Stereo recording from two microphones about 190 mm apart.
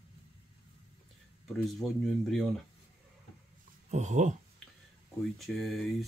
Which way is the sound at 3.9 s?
40° right (ahead or behind).